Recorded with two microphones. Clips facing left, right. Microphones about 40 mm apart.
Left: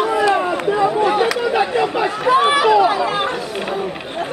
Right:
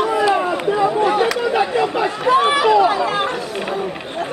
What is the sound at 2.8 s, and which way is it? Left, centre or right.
Chatter, centre.